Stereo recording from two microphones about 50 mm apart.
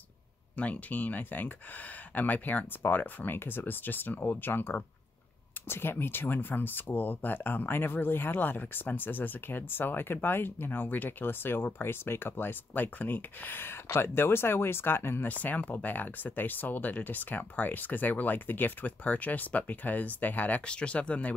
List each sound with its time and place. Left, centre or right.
0.6 s speech: left
15.2 s speech: left
20.6 s speech: left